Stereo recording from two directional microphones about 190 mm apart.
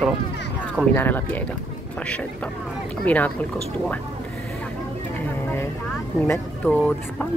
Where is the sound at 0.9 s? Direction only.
10° left (ahead or behind).